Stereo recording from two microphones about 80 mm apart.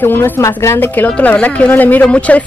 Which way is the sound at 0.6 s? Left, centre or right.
Left.